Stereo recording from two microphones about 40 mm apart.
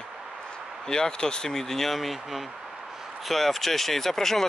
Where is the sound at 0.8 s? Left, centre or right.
Centre.